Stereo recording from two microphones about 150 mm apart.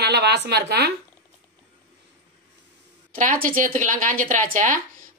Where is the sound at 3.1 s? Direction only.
65° right (ahead or behind).